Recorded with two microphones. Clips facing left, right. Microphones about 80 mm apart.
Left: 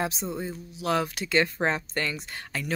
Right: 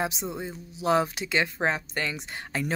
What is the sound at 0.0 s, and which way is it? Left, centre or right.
Speech, centre.